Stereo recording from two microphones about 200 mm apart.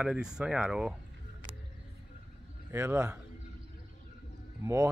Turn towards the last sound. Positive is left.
turn(degrees=-15)  # may be behind; listen again after turning